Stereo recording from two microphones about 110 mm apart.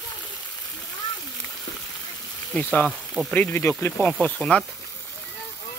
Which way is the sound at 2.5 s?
10° left (ahead or behind).